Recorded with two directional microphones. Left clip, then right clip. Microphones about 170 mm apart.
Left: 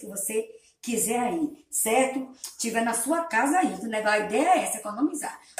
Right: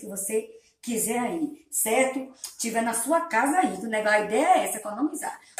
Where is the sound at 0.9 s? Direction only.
Centre (ahead or behind).